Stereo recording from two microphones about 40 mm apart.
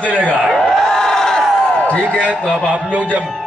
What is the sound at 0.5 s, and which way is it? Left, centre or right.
Crowd, centre.